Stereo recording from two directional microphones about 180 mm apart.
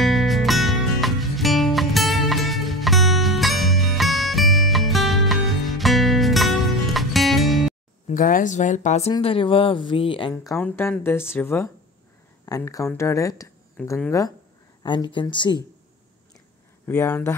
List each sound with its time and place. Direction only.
0.0 s music: centre (ahead or behind)
8.1 s speech: 45° left (ahead or behind); by 10.3 s 30° left (ahead or behind)
10.3 s a woman's voice: 15° left (ahead or behind)
13.7 s a woman's voice: 5° left (ahead or behind)
14.8 s speech: 25° left (ahead or behind)
16.8 s a woman's voice: 15° left (ahead or behind)